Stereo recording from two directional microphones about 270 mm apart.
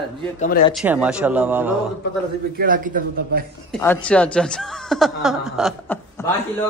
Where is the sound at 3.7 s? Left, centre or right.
Centre.